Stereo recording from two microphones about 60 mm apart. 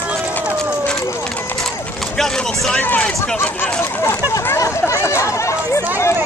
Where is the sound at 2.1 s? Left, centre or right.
Centre.